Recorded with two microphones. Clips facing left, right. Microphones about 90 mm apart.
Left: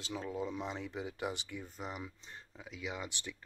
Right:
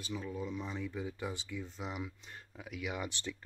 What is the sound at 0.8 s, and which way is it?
Speech, 70° left (ahead or behind).